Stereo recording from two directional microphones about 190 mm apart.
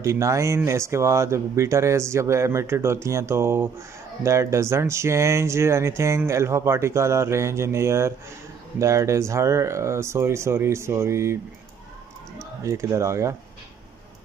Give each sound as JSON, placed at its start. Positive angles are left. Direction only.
{"t": 0.0, "sound": "speech", "side_deg": -15}
{"t": 12.4, "sound": "speech", "side_deg": -15}